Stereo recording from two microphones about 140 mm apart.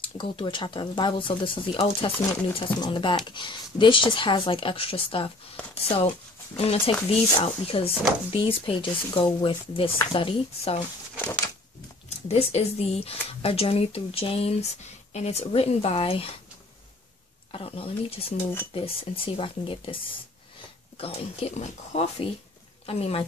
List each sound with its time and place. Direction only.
0.2 s speech: 35° left (ahead or behind)
11.1 s a sound: 10° left (ahead or behind)
12.3 s speech: 50° left (ahead or behind)
17.5 s speech: 40° left (ahead or behind)
21.0 s speech: 45° left (ahead or behind)